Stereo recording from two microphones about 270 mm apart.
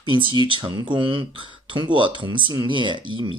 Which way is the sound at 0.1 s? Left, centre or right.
Centre.